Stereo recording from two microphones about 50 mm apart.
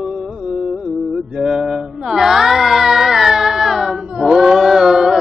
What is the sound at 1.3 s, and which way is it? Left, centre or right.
Music, centre.